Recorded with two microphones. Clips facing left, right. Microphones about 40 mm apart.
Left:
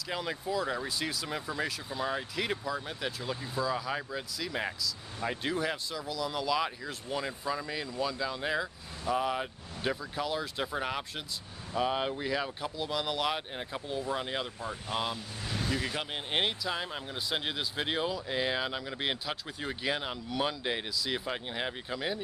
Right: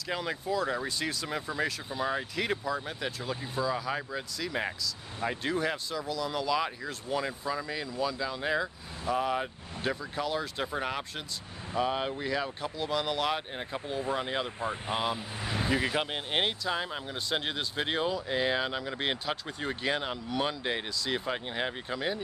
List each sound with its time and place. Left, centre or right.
0.1 s speech: centre
14.6 s speech: right
15.0 s speech: centre
16.3 s speech: centre